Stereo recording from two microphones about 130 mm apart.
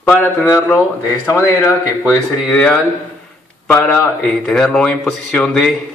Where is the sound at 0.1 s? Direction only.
15° left (ahead or behind).